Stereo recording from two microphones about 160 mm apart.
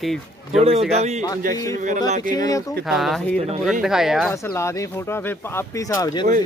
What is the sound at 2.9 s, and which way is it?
A man's voice, centre (ahead or behind).